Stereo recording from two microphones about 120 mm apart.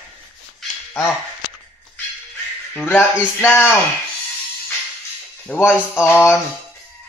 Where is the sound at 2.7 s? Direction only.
20° left (ahead or behind).